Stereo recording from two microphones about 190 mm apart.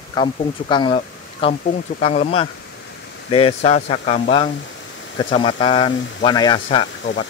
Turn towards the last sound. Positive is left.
turn(degrees=75)  # may be behind; listen again after turning